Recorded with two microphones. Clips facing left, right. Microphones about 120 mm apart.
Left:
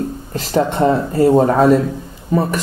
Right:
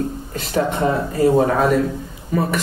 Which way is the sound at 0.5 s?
40° left (ahead or behind).